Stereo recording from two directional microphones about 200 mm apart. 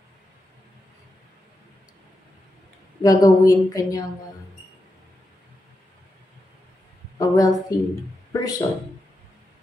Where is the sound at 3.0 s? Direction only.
20° left (ahead or behind).